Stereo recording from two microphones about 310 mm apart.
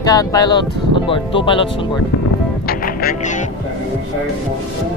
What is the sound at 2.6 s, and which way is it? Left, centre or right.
Music, left.